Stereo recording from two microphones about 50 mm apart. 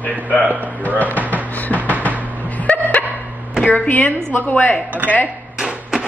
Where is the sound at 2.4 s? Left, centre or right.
Left.